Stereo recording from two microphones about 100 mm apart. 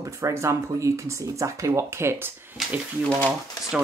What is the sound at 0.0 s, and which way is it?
Speech, 30° right (ahead or behind).